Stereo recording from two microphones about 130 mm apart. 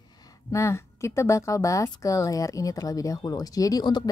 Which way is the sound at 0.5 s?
20° left (ahead or behind).